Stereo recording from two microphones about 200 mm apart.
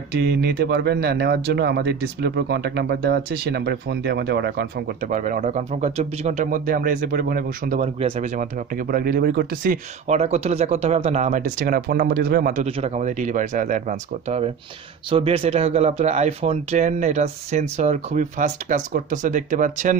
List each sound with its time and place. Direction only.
0.1 s speech: 55° right (ahead or behind)
5.1 s speech: 40° right (ahead or behind)
8.9 s speech: 50° right (ahead or behind)
12.6 s speech: 30° right (ahead or behind)